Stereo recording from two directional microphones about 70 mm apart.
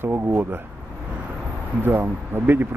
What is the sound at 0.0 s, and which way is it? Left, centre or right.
Speech, right.